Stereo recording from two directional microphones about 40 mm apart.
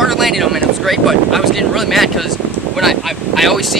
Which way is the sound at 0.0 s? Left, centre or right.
Centre.